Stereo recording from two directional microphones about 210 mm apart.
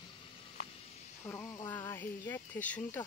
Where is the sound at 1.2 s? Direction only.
15° left (ahead or behind).